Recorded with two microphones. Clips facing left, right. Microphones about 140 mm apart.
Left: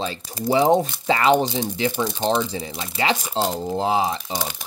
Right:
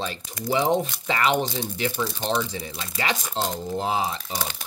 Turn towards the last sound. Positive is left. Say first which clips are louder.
# left 4 dB
turn(degrees=25)  # may be behind; listen again after turning